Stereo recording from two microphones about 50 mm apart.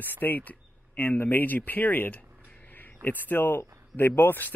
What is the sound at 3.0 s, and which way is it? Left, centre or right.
A man's voice, left.